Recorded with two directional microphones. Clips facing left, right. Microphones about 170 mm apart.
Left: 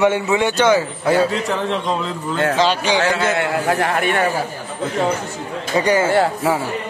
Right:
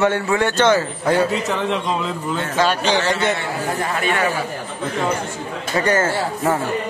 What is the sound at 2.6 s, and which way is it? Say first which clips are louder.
Speech: right 2 dB; 10° left (ahead or behind).